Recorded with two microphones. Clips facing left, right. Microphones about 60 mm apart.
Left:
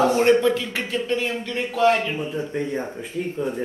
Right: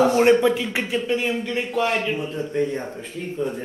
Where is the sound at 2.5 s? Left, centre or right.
Centre.